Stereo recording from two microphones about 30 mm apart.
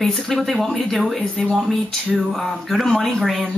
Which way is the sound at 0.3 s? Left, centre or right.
Centre.